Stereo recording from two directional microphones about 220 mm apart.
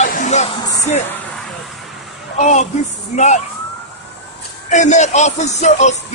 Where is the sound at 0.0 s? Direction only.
35° left (ahead or behind).